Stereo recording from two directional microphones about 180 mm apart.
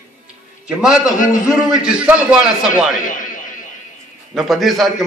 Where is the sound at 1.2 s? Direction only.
45° left (ahead or behind).